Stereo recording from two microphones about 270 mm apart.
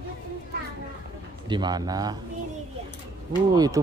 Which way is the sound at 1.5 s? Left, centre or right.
Centre.